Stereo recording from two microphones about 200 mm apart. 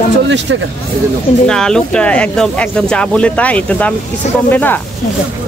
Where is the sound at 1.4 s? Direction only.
5° left (ahead or behind).